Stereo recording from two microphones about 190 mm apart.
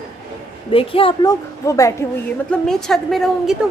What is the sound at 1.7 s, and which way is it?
Speech, 15° left (ahead or behind).